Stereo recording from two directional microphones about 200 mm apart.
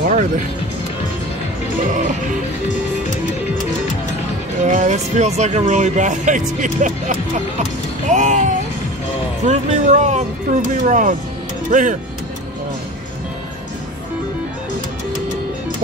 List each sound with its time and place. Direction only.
0.1 s speech: 40° right (ahead or behind)
1.9 s speech: 40° right (ahead or behind)
4.6 s speech: 35° right (ahead or behind)
9.5 s speech: 35° right (ahead or behind)